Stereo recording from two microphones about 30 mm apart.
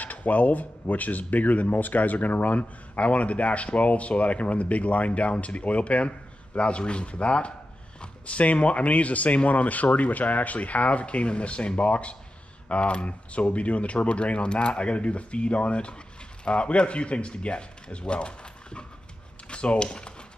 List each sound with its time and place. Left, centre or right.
0.0 s speech: left
9.8 s speech: left
10.1 s speech: left